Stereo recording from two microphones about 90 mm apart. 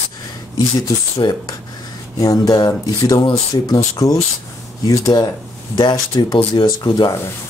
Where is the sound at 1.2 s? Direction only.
55° left (ahead or behind).